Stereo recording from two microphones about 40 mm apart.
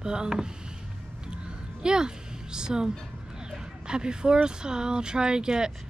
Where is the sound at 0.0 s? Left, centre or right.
Centre.